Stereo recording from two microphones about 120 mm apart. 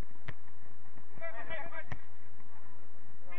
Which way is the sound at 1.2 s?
15° right (ahead or behind).